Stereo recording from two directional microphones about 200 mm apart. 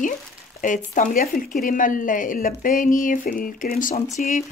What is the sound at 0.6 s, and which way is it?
Speech, 40° left (ahead or behind).